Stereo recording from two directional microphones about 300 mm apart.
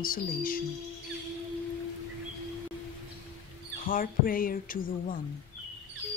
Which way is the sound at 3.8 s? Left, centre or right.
Left.